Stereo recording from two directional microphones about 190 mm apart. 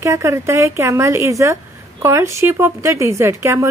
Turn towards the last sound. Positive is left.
turn(degrees=-15)  # may be behind; listen again after turning